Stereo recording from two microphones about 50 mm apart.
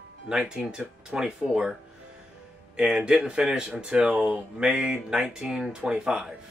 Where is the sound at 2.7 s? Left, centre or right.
Centre.